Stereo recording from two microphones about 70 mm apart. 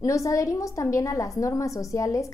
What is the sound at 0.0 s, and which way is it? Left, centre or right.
A woman's voice, left.